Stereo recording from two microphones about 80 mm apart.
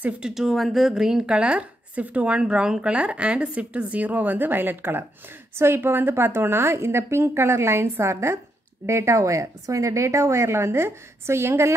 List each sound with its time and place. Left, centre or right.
0.3 s a woman's voice: centre; by 11.7 s right